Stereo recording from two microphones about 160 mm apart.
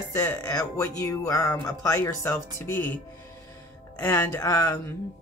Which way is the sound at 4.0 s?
15° left (ahead or behind).